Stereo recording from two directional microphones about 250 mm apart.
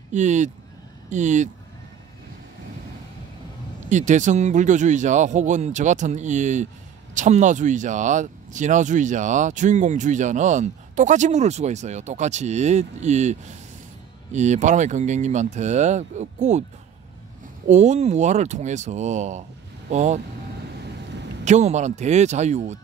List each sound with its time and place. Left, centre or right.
0.1 s speech: right
3.9 s speech: right
17.6 s speech: right
21.5 s speech: right